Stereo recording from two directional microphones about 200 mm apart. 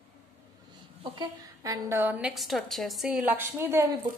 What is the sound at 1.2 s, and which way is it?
A woman's voice, 15° right (ahead or behind).